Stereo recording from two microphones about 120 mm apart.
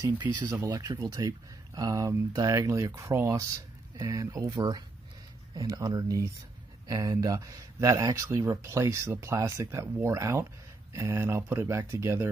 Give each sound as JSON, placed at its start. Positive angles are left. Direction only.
{"t": 0.0, "sound": "speech", "side_deg": -30}